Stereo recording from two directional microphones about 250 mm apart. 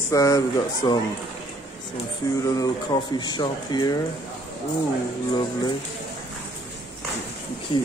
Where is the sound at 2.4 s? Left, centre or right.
Centre.